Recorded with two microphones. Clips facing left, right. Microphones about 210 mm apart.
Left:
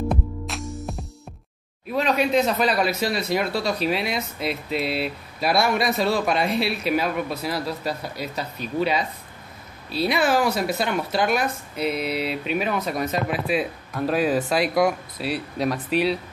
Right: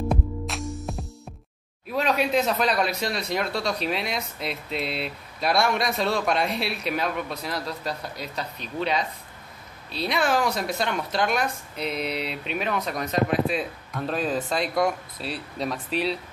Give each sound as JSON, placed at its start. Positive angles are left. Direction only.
{"t": 0.1, "sound": "music", "side_deg": 0}
{"t": 1.9, "sound": "speech", "side_deg": 0}